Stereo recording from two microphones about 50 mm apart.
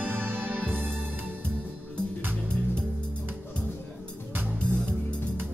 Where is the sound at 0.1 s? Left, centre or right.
Right.